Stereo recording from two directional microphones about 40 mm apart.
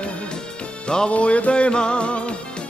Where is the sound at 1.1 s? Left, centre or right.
Left.